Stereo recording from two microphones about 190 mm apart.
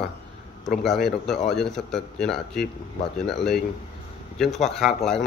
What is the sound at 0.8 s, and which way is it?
Speech, centre (ahead or behind).